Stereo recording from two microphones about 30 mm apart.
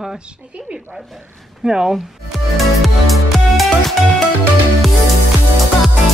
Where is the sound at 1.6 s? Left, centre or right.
Right.